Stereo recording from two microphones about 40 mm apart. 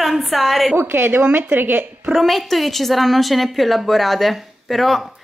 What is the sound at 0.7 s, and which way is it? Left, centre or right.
A woman's voice, right.